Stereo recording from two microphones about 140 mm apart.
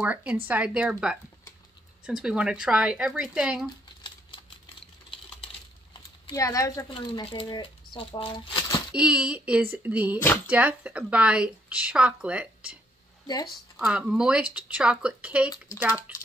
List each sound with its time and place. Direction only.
0.0 s speech: 10° right (ahead or behind)
6.3 s speech: 25° left (ahead or behind)
6.9 s speech: 40° left (ahead or behind)
8.9 s speech: 10° right (ahead or behind)